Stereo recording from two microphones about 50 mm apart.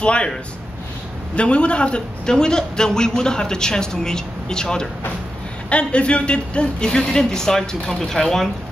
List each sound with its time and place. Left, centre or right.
0.0 s speech: left
1.3 s a man's voice: left